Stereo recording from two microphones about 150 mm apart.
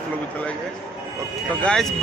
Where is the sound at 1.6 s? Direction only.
5° left (ahead or behind).